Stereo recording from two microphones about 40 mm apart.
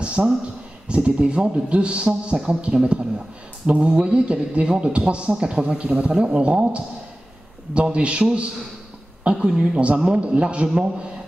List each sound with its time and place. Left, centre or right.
0.0 s a sound: right
0.8 s speech: right
3.6 s mantra: right
3.9 s speech: right
9.2 s speech: right